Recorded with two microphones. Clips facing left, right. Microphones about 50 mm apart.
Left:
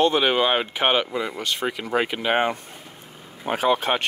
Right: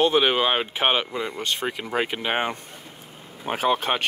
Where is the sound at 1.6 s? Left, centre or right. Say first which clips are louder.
Left 4 dB; centre.